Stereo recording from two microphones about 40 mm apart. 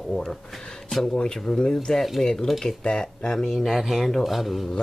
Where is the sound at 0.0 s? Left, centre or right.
Centre; by 2.8 s left.